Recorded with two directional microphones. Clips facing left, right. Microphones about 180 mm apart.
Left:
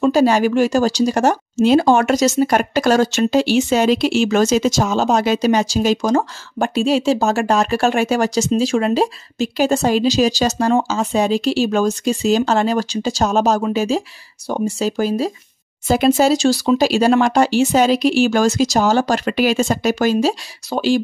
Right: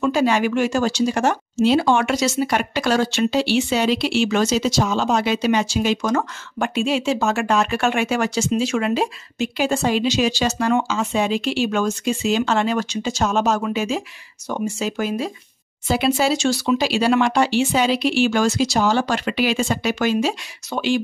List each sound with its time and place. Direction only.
0.0 s speech: 40° left (ahead or behind)